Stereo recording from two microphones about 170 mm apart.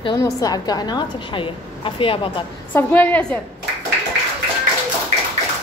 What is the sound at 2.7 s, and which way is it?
Speech, 10° left (ahead or behind).